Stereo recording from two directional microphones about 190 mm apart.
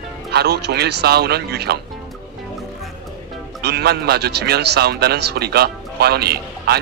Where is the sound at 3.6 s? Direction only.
60° right (ahead or behind).